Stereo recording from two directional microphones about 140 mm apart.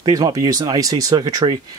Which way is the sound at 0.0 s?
25° right (ahead or behind).